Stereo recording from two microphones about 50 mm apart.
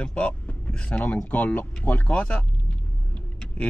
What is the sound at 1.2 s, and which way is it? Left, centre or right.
Speech, left.